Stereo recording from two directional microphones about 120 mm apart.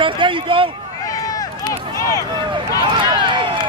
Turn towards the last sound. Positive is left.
turn(degrees=-45)  # may be behind; listen again after turning